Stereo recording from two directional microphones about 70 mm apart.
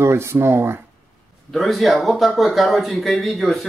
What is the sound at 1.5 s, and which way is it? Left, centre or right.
Speech, centre.